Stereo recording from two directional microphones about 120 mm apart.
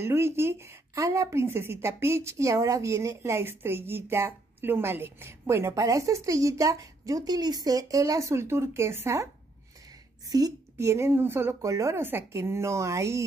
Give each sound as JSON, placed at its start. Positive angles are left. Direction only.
{"t": 0.0, "sound": "a woman's voice", "side_deg": -20}
{"t": 10.3, "sound": "a woman's voice", "side_deg": -25}